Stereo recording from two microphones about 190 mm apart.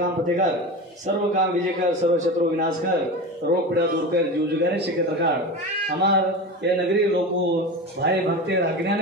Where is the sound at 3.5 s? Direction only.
55° right (ahead or behind).